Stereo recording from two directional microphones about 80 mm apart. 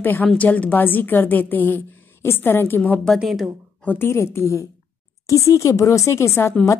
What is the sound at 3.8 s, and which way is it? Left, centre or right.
Speech, left.